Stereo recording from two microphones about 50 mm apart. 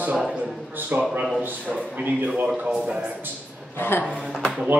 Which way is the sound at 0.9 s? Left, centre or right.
Right.